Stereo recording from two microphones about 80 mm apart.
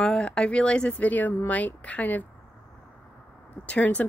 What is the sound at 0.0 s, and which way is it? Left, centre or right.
Speech, centre.